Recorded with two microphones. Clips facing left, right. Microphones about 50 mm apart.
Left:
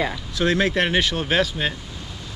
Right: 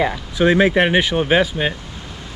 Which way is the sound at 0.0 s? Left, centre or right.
Centre.